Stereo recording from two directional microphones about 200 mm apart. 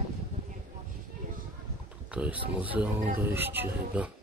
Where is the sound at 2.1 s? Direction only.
5° right (ahead or behind).